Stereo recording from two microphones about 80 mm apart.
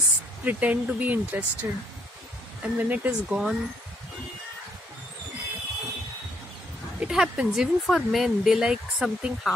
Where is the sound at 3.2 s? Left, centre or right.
Centre.